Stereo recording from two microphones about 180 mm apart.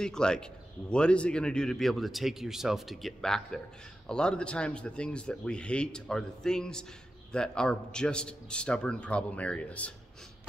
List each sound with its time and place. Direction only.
0.0 s a man's voice: 5° left (ahead or behind)